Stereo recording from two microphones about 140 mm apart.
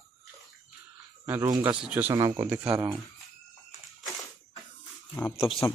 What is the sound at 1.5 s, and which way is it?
Speech, 30° right (ahead or behind).